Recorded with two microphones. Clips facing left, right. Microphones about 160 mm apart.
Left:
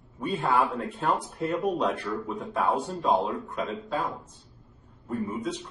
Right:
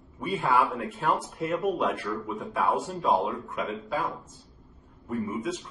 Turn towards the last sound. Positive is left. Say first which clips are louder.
# even
turn(degrees=-5)  # may be behind; listen again after turning